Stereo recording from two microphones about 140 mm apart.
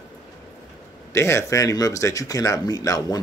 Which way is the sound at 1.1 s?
20° left (ahead or behind).